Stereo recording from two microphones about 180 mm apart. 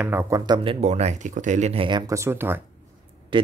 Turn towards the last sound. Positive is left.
turn(degrees=-25)  # may be behind; listen again after turning